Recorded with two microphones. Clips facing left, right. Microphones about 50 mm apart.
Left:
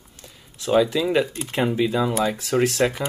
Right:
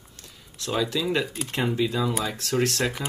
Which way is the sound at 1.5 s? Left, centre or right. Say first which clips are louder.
Left 3 dB; centre.